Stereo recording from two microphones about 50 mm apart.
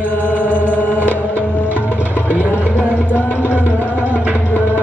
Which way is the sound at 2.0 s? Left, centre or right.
Right.